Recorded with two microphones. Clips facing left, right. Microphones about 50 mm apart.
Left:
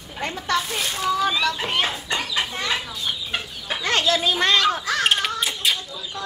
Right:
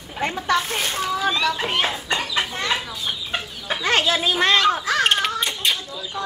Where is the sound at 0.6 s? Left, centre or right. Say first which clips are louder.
Right 2 dB; right.